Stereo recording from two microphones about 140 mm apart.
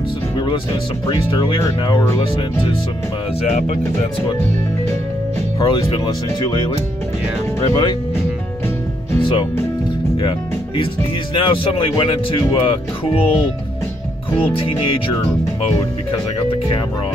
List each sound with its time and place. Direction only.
1.0 s speech: 35° left (ahead or behind)
5.6 s speech: 30° left (ahead or behind)
7.6 s speech: 40° left (ahead or behind)
11.3 s speech: 40° left (ahead or behind)
14.4 s speech: 40° left (ahead or behind)